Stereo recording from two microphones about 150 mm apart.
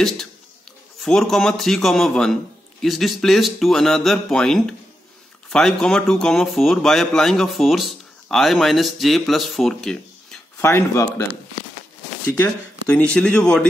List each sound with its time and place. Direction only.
1.0 s speech: centre (ahead or behind)
10.6 s speech: 20° left (ahead or behind)
12.9 s speech: 5° left (ahead or behind)